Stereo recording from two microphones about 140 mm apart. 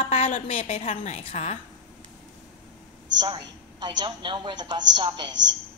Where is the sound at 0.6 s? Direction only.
45° left (ahead or behind).